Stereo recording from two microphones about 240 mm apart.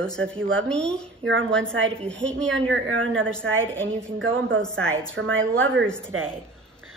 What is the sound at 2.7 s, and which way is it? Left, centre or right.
A woman's voice, right.